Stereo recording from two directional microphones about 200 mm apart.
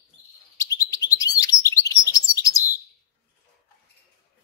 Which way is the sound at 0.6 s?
15° left (ahead or behind).